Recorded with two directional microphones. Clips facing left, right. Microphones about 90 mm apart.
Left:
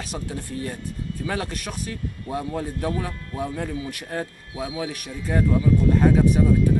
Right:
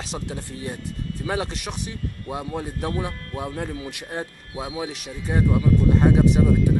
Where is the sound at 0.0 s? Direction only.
25° right (ahead or behind).